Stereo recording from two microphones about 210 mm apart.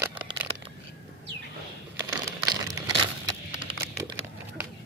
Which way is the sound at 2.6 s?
15° right (ahead or behind).